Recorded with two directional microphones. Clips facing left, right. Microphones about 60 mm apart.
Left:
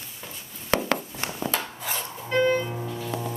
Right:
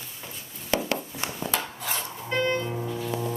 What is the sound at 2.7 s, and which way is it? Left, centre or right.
Music, centre.